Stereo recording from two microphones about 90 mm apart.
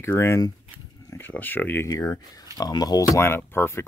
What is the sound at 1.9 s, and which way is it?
Speech, 45° left (ahead or behind).